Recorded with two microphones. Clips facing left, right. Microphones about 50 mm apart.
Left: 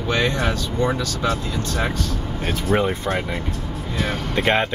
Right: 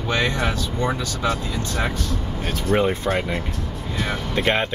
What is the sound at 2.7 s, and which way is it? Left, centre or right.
Speech, centre.